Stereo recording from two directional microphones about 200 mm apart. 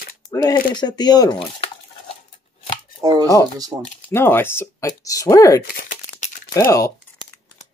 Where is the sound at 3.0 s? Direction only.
20° right (ahead or behind).